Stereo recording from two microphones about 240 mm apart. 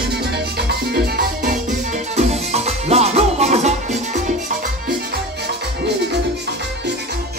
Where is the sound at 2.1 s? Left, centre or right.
Right.